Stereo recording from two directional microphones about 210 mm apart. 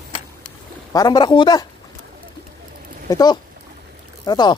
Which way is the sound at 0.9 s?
20° left (ahead or behind).